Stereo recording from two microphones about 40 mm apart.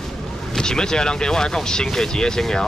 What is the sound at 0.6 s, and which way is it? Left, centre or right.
Speech, centre.